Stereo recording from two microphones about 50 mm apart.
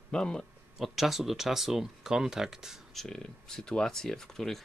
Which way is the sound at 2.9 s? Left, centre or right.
Centre.